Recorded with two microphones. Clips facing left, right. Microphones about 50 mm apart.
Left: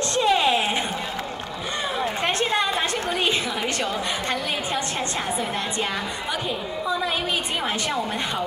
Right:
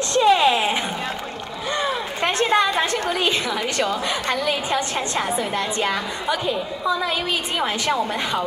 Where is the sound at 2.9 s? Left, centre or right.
Centre.